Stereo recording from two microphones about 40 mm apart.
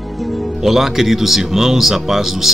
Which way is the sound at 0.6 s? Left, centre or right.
Centre.